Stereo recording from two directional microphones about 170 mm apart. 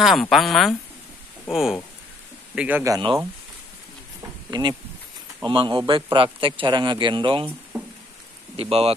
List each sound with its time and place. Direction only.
0.0 s a man's voice: centre (ahead or behind)
2.8 s speech: 25° right (ahead or behind)
4.5 s speech: 25° right (ahead or behind)
8.5 s speech: 35° right (ahead or behind)